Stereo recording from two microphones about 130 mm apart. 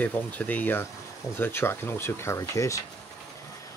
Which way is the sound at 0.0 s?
10° left (ahead or behind).